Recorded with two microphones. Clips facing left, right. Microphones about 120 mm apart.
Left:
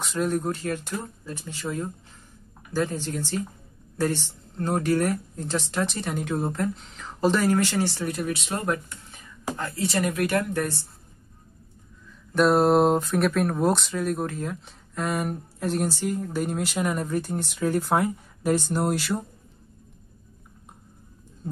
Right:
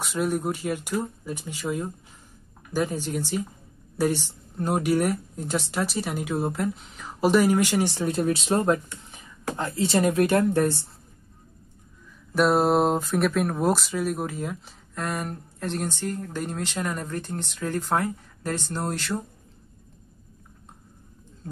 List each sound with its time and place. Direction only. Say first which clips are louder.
0.0 s speech: even; 5° right (ahead or behind); by 10.9 s 25° right (ahead or behind)
12.3 s speech: left 1 dB; centre (ahead or behind)